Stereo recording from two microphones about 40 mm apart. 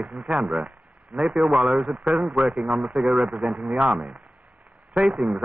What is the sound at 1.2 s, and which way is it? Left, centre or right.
A man's voice, centre.